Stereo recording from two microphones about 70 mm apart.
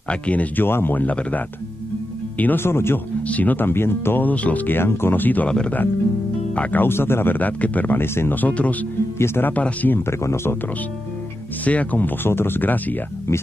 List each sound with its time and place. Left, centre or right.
0.1 s speech: left
0.7 s speech: left
2.6 s speech: left
3.3 s speech: left
6.5 s speech: left
9.2 s speech: left
9.5 s speech: left
9.9 s speech: left
11.6 s speech: left